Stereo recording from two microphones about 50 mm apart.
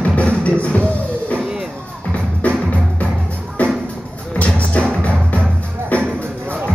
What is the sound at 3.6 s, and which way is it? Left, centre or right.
Music, left.